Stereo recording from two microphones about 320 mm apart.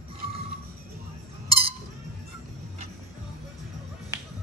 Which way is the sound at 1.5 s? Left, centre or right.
Centre.